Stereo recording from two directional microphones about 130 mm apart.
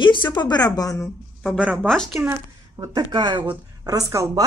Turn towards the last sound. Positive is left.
turn(degrees=-25)  # may be behind; listen again after turning